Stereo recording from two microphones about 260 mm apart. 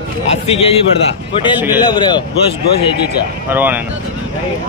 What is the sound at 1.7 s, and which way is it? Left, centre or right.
Speech, centre.